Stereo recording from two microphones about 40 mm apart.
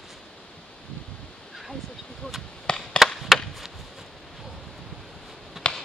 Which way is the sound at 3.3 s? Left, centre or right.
Centre.